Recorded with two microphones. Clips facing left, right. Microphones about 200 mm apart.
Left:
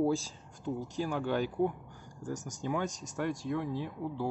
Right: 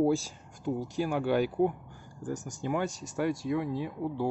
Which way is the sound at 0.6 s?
10° right (ahead or behind).